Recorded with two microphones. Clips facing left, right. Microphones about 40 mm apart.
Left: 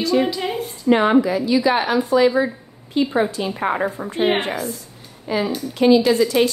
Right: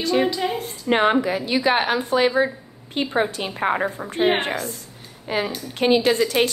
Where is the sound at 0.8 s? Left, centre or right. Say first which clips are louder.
Left 3 dB; right.